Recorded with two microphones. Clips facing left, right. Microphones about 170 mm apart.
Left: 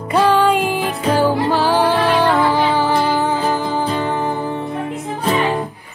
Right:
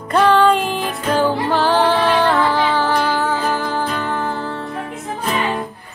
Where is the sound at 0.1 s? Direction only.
10° left (ahead or behind).